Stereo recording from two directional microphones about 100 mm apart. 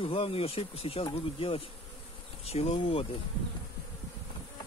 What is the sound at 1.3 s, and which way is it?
Speech, 65° left (ahead or behind).